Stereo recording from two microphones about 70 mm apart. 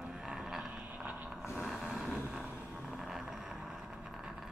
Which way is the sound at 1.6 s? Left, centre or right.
Centre.